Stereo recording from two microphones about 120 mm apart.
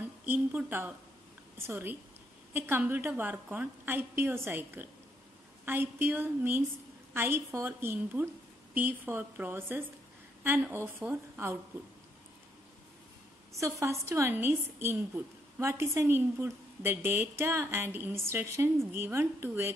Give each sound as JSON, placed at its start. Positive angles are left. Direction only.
{"t": 0.0, "sound": "a woman's voice", "side_deg": -15}
{"t": 13.5, "sound": "a woman's voice", "side_deg": -25}